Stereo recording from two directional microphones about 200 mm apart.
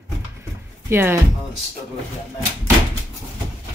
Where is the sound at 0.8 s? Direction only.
10° right (ahead or behind).